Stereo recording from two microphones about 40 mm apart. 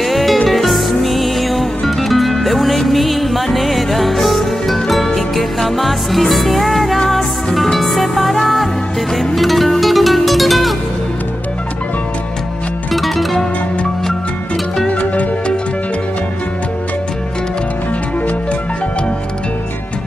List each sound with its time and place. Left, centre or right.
0.0 s music: centre
12.9 s music: centre
14.9 s music: left